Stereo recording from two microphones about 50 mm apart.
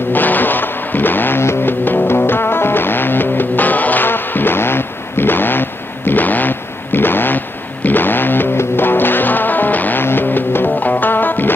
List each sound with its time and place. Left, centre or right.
0.1 s music: left
1.4 s music: left
1.7 s music: left